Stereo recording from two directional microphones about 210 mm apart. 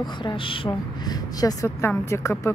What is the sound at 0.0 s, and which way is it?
A woman's voice, 20° left (ahead or behind).